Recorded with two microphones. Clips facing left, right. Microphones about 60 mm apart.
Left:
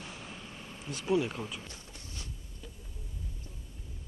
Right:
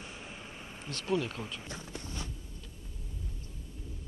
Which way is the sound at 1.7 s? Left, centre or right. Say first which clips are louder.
Right 7 dB; right.